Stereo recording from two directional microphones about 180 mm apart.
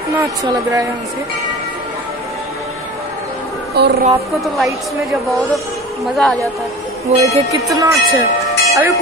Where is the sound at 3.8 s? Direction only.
65° right (ahead or behind).